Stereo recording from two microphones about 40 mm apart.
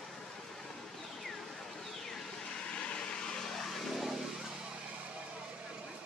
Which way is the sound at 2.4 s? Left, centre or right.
Left.